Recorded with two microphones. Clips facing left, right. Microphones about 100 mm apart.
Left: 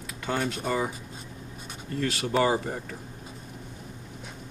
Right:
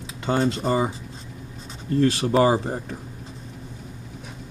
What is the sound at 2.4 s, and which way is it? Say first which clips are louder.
Speech: right 5 dB; 30° right (ahead or behind).